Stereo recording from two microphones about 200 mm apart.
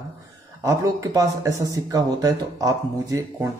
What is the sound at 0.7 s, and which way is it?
Speech, 15° right (ahead or behind).